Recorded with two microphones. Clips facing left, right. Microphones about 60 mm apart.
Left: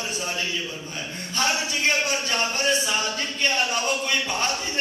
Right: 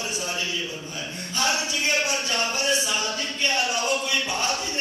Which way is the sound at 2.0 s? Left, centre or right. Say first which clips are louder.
Left 1 dB; left.